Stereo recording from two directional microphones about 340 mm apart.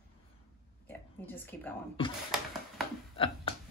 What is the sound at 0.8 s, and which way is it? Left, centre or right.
Speech, centre.